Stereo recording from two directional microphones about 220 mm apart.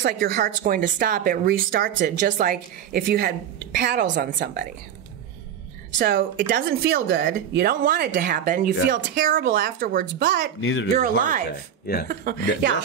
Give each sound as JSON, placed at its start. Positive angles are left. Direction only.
{"t": 0.0, "sound": "speech", "side_deg": -40}
{"t": 4.0, "sound": "a woman's voice", "side_deg": -55}
{"t": 5.9, "sound": "speech", "side_deg": -40}
{"t": 10.6, "sound": "speech", "side_deg": 65}
{"t": 11.0, "sound": "speech", "side_deg": -35}